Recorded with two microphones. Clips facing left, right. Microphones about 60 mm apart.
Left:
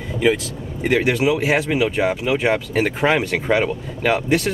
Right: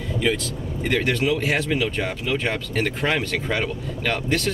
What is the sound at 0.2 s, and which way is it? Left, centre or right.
Speech, centre.